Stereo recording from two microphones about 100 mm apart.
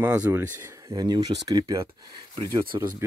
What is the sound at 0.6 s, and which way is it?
Speech, 30° right (ahead or behind).